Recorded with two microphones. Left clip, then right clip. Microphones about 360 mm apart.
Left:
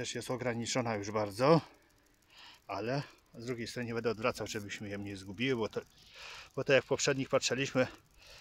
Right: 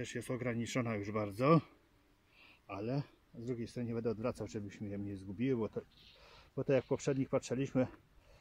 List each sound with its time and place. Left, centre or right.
0.0 s speech: centre
2.3 s a sound: centre
3.4 s speech: left